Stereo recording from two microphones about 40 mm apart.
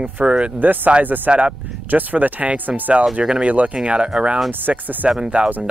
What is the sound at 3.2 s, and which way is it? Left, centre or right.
Speech, centre.